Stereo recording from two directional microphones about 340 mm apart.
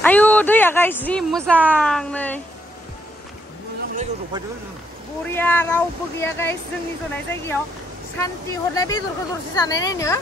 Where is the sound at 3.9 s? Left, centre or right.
Centre.